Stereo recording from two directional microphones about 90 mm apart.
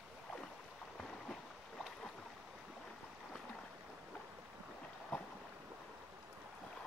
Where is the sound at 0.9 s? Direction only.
5° left (ahead or behind).